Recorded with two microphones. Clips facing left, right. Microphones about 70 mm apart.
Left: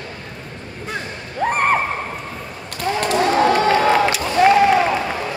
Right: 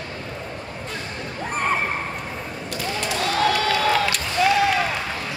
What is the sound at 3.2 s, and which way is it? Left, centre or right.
Crowd, left.